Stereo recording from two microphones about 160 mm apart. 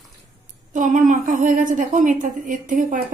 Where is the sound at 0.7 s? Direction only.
50° right (ahead or behind).